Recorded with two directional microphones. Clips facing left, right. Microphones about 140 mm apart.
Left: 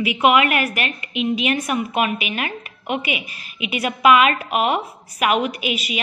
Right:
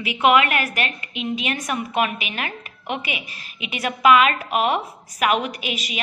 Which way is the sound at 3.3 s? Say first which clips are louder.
Even; 35° right (ahead or behind).